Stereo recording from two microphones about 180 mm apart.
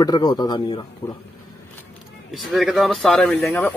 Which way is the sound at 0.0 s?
25° left (ahead or behind).